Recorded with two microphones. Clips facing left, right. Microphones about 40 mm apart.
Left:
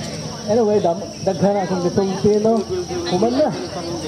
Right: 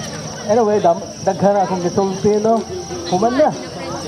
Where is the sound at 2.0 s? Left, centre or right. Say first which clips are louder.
Right 2 dB; centre.